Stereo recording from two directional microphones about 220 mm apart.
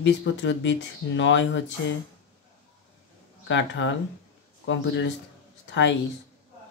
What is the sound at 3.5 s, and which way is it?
Speech, 55° left (ahead or behind).